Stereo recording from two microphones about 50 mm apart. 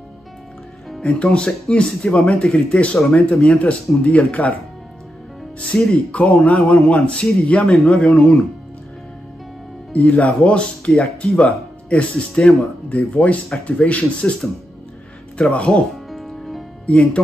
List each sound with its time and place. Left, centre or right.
1.0 s speech: left
5.7 s speech: left
9.9 s speech: left
15.7 s music: centre
16.8 s speech: left